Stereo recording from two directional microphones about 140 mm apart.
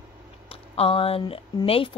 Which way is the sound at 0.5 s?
45° left (ahead or behind).